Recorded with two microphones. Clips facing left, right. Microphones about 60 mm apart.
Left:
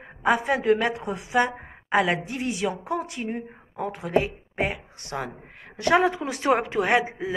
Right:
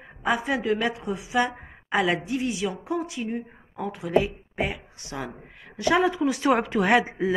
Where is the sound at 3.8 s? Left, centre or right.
Left.